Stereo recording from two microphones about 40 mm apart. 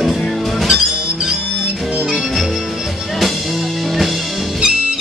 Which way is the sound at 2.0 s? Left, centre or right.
Centre.